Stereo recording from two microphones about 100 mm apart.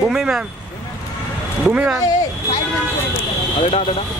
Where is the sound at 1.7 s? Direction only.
10° right (ahead or behind).